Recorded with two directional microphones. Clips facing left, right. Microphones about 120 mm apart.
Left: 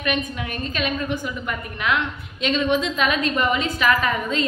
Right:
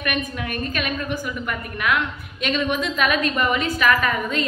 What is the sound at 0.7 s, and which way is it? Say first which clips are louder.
Speech: left 4 dB; 25° left (ahead or behind).